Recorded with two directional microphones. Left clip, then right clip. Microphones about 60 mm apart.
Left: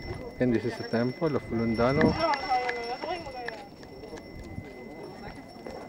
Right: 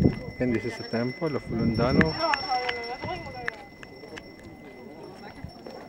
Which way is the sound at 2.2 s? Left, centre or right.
Left.